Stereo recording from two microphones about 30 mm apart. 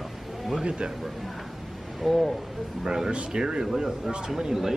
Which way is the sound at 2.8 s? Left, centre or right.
Centre.